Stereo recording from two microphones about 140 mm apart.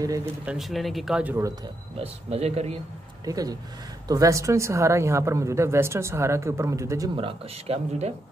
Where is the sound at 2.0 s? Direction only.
45° right (ahead or behind).